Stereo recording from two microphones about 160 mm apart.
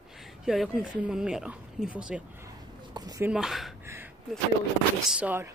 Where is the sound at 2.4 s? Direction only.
25° right (ahead or behind).